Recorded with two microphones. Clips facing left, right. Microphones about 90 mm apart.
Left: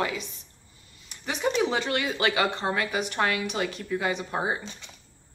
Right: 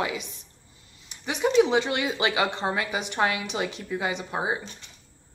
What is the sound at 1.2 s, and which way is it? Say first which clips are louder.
Speech: right 4 dB; 15° right (ahead or behind).